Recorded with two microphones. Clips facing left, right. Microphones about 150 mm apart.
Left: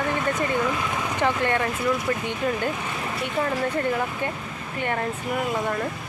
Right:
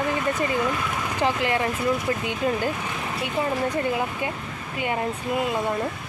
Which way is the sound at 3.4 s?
15° right (ahead or behind).